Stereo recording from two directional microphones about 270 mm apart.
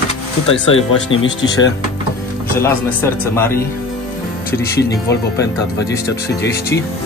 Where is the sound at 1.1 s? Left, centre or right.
Left.